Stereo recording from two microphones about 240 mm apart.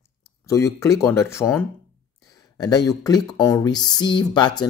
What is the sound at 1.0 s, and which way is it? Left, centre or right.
Speech, centre.